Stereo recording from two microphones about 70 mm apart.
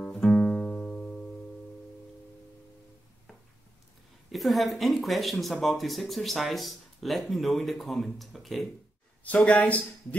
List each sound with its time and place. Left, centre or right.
0.0 s music: centre
4.3 s speech: centre
9.2 s speech: left